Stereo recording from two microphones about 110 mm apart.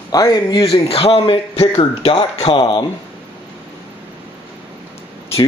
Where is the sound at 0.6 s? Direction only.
60° left (ahead or behind); by 2.8 s 45° left (ahead or behind).